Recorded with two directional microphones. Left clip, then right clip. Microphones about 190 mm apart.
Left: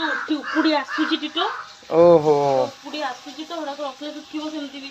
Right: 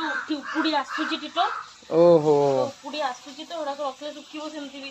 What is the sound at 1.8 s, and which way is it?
Speech, 20° right (ahead or behind).